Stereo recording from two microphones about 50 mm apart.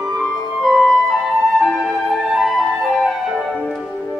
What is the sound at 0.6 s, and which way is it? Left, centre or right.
Flute, centre.